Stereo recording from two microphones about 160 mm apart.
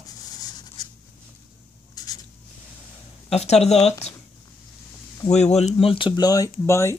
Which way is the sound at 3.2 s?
40° left (ahead or behind).